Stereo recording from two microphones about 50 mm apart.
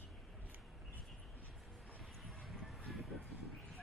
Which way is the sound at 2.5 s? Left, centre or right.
Centre.